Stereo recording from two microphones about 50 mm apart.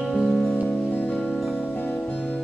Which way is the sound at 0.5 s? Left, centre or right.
Left.